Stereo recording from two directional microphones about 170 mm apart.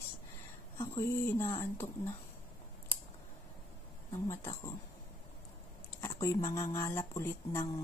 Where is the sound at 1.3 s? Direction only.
15° left (ahead or behind).